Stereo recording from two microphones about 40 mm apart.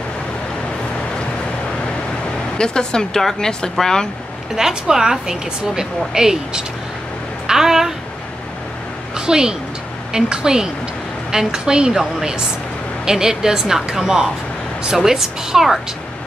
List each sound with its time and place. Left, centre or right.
2.5 s speech: left
3.2 s speech: centre
4.6 s a woman's voice: centre
7.4 s a sound: centre
9.1 s a sound: centre
10.1 s a woman's voice: centre